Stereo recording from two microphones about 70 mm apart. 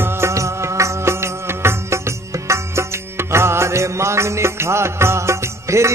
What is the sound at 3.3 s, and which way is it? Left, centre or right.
Music, right.